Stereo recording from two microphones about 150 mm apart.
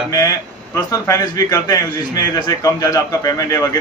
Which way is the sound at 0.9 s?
25° left (ahead or behind).